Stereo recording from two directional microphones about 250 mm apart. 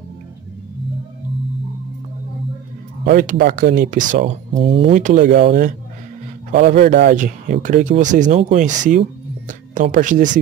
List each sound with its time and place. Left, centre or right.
3.1 s speech: right